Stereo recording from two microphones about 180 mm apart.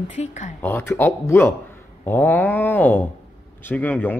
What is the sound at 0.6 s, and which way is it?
Speech, 10° left (ahead or behind).